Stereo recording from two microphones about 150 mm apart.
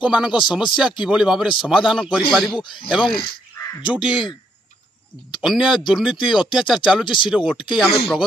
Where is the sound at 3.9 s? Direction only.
35° left (ahead or behind).